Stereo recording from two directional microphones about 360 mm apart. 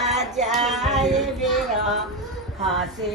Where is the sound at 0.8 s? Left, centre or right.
Centre.